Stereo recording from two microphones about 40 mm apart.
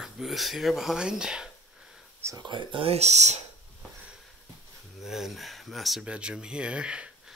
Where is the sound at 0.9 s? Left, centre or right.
Centre.